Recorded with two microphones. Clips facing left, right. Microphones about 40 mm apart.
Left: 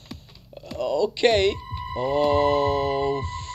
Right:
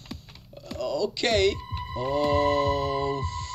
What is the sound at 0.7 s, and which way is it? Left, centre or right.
A man's voice, left.